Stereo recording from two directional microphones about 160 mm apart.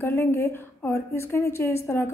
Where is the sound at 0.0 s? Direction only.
15° left (ahead or behind).